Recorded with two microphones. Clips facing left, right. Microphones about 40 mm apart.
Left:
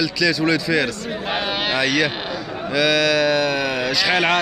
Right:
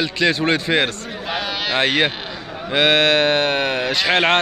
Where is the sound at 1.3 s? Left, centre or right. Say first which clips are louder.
Left 1 dB; centre.